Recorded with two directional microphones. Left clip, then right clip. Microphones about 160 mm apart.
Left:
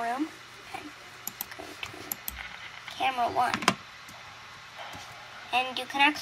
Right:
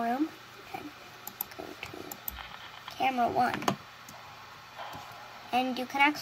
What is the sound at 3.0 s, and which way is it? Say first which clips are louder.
Speech: left 1 dB; 65° right (ahead or behind).